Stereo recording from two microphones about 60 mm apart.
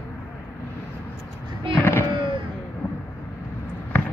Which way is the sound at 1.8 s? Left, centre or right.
Left.